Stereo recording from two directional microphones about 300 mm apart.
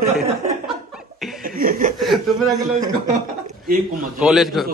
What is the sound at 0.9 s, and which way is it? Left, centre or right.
Laughter, centre.